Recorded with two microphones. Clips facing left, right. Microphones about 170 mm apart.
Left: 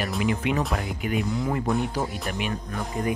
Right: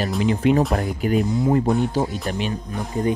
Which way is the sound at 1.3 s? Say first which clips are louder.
Right 6 dB; 25° right (ahead or behind).